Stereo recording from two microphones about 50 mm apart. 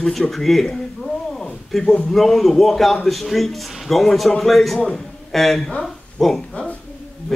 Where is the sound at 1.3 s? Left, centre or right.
Centre.